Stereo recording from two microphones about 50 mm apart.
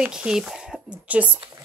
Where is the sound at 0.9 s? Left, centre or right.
Right.